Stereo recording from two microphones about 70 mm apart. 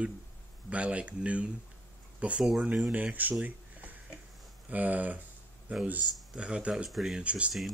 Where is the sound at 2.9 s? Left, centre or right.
Right.